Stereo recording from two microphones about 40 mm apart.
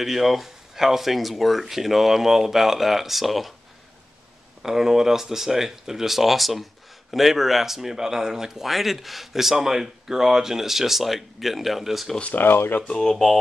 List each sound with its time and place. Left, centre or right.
0.0 s speech: centre
4.6 s speech: centre
12.4 s speech: left
12.8 s speech: centre
13.1 s speech: centre